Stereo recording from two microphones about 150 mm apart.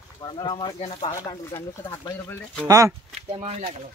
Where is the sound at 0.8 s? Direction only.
45° left (ahead or behind).